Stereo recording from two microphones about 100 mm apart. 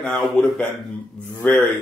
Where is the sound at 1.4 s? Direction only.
15° left (ahead or behind).